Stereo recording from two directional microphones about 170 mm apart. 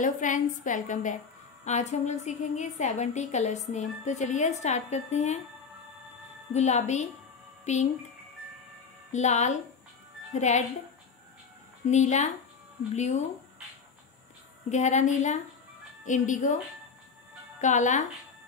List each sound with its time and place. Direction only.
0.0 s a woman's voice: 50° left (ahead or behind)
6.5 s a woman's voice: 40° left (ahead or behind)
9.1 s a woman's voice: 40° left (ahead or behind)
11.9 s a woman's voice: 40° left (ahead or behind)
14.7 s a woman's voice: 45° left (ahead or behind)
17.6 s a woman's voice: 45° left (ahead or behind)